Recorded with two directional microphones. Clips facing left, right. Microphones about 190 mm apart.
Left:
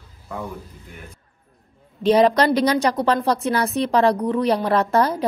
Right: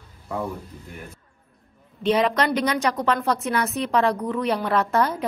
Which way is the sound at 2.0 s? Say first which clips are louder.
Left 5 dB; 35° left (ahead or behind).